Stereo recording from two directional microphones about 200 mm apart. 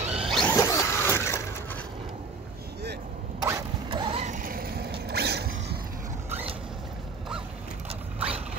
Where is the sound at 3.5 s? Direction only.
20° right (ahead or behind); by 5.8 s 55° right (ahead or behind).